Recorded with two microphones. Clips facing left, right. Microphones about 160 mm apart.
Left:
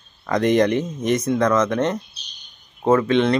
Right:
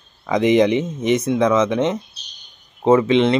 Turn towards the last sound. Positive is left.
turn(degrees=0)  # may be behind; listen again after turning